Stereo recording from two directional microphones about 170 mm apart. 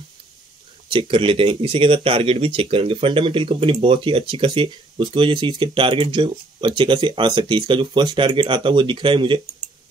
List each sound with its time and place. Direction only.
0.8 s speech: 30° right (ahead or behind)